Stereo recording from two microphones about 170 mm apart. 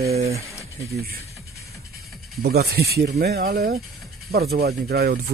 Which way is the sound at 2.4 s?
70° right (ahead or behind).